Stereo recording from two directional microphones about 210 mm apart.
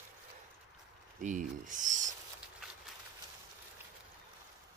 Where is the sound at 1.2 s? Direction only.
35° right (ahead or behind).